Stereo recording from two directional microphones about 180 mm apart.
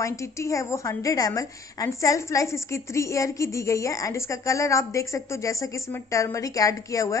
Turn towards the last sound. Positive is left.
turn(degrees=20)  # may be behind; listen again after turning